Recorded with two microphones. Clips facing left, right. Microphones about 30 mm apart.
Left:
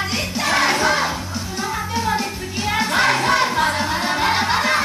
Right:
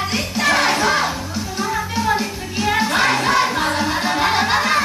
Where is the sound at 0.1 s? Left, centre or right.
Centre.